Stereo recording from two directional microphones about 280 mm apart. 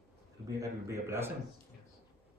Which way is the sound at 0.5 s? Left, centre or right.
Centre.